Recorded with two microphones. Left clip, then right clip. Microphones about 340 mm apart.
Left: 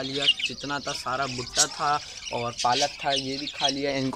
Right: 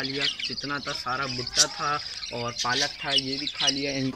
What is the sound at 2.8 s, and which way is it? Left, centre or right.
Speech, left.